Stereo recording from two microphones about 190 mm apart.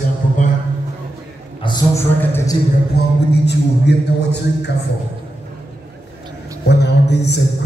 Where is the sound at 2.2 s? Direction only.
10° left (ahead or behind).